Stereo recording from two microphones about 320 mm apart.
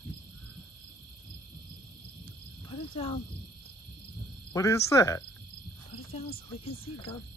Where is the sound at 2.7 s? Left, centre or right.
Centre.